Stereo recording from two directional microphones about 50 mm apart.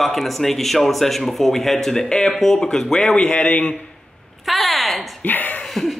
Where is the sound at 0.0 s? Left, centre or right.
Centre.